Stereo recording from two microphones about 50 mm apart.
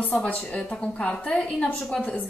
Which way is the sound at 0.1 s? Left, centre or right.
Left.